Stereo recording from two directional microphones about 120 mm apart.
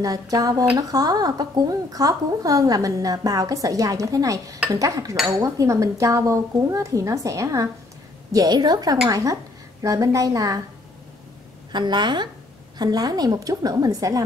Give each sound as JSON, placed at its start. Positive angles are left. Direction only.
{"t": 0.0, "sound": "a woman's voice", "side_deg": -30}
{"t": 11.7, "sound": "a woman's voice", "side_deg": -40}